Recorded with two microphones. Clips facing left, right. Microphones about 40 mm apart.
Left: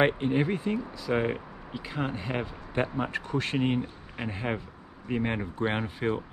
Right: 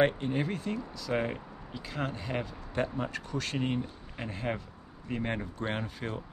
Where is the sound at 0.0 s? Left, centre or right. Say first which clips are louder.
Left 3 dB; left.